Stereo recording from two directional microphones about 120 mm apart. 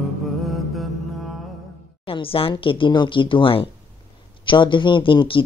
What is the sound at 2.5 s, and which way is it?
Speech, 45° left (ahead or behind).